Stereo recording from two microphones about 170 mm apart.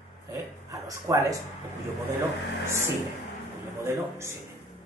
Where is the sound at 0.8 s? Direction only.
20° right (ahead or behind).